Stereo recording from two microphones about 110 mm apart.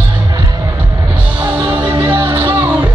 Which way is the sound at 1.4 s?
30° right (ahead or behind).